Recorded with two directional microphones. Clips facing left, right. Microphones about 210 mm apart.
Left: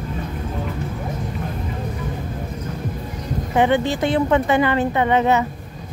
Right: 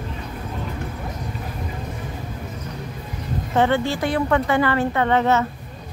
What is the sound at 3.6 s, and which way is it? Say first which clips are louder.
A woman's voice: left 2 dB; 15° left (ahead or behind).